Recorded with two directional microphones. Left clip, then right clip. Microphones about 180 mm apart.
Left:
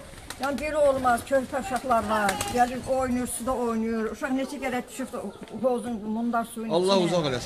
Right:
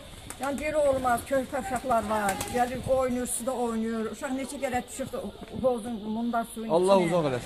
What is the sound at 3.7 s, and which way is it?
Speech, 55° right (ahead or behind).